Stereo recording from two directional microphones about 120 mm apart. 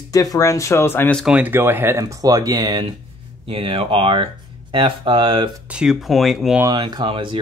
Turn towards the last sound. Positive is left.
turn(degrees=-45)  # may be behind; listen again after turning